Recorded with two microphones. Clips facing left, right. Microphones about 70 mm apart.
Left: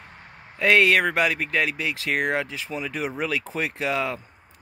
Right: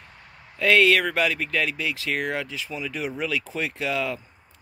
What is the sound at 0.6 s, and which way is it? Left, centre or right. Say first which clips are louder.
Speech: even; left.